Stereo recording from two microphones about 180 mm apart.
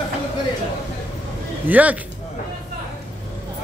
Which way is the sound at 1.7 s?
10° right (ahead or behind).